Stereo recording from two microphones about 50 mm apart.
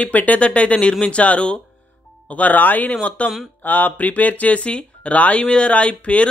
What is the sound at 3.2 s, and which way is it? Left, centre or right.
Speech, centre.